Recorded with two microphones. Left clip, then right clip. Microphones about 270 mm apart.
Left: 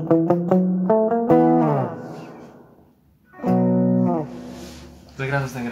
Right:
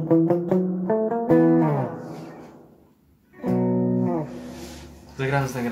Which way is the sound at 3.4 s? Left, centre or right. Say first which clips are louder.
Left 4 dB; left.